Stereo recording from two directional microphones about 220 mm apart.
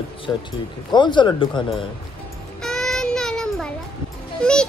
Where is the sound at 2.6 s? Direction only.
Centre (ahead or behind).